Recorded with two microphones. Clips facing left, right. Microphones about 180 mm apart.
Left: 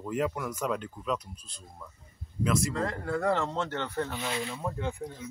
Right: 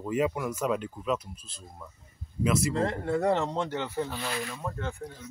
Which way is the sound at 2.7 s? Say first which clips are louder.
Right 3 dB; 25° right (ahead or behind).